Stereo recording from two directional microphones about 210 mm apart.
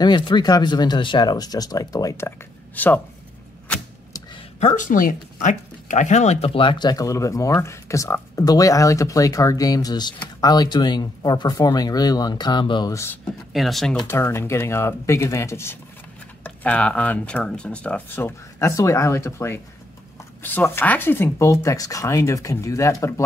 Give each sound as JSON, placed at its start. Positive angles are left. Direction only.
{"t": 0.0, "sound": "speech", "side_deg": 20}
{"t": 3.6, "sound": "a sound", "side_deg": 5}
{"t": 4.6, "sound": "speech", "side_deg": 35}
{"t": 13.5, "sound": "speech", "side_deg": 0}
{"t": 13.9, "sound": "speech", "side_deg": 10}